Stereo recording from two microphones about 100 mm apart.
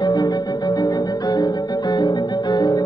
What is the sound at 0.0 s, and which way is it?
Music, 45° left (ahead or behind).